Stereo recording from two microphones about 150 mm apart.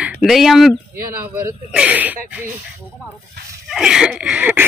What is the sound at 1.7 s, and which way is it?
Speech, 10° right (ahead or behind).